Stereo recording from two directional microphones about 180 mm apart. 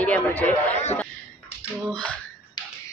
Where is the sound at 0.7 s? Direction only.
40° left (ahead or behind).